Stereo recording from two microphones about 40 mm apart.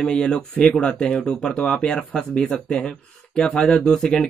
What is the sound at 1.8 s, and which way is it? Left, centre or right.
Speech, centre.